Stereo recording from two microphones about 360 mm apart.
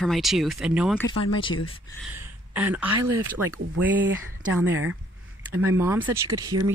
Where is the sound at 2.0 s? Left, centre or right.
Centre.